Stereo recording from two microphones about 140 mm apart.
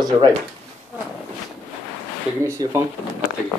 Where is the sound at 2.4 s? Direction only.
20° right (ahead or behind).